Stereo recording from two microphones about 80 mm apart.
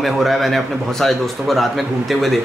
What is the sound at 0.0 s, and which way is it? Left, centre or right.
A man's voice, centre.